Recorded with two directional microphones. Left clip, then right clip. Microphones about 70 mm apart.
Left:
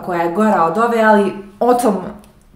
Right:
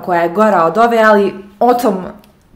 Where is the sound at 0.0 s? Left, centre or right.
Right.